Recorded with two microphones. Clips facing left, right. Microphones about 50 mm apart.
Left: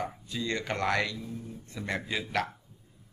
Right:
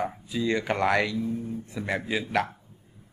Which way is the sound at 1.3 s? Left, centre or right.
Right.